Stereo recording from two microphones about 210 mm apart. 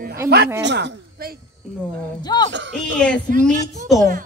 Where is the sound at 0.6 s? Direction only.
55° right (ahead or behind).